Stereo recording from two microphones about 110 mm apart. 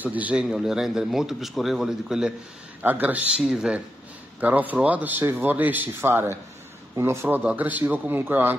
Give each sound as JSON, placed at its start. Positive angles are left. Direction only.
{"t": 0.0, "sound": "a man's voice", "side_deg": -15}